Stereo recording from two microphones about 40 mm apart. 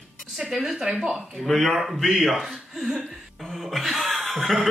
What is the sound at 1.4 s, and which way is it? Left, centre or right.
Speech, centre.